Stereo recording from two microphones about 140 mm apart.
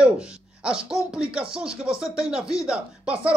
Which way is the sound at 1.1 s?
5° right (ahead or behind).